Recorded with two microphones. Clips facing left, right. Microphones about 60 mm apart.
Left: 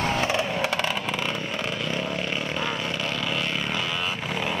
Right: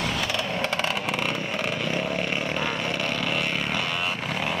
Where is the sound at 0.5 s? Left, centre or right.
Centre.